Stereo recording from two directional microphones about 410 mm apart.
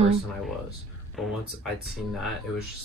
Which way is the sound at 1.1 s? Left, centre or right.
Centre.